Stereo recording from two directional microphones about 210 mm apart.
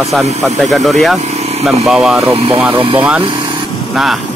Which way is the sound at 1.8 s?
Centre (ahead or behind).